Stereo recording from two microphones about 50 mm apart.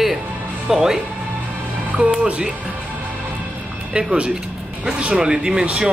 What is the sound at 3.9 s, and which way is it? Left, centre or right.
Speech, centre.